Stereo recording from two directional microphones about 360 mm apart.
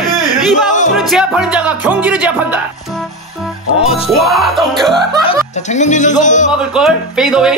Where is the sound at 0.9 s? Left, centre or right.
Centre.